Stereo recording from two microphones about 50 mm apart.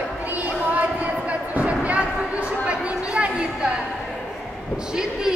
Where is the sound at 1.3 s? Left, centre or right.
Right.